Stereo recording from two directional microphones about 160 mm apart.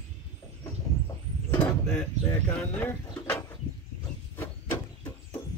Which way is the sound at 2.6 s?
10° left (ahead or behind).